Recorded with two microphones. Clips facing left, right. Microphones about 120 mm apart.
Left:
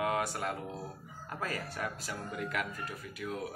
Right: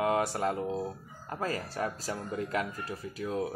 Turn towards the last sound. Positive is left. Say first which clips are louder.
# right 6 dB
turn(degrees=-35)  # may be behind; listen again after turning